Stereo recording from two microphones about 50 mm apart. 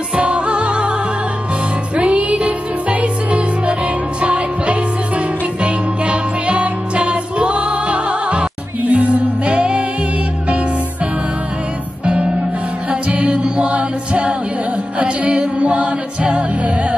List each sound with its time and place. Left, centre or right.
0.1 s music: right
2.0 s music: right
12.1 s music: right